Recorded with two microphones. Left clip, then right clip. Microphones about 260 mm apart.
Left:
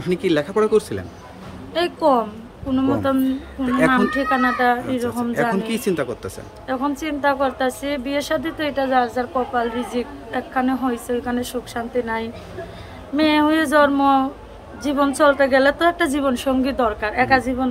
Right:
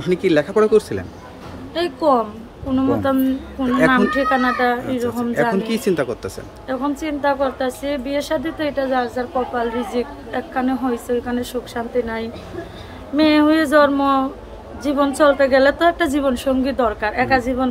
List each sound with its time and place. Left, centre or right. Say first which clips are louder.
0.1 s speech: right 3 dB; centre